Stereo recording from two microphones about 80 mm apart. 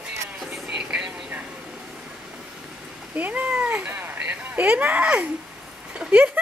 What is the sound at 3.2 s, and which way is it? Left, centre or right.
Speech, centre.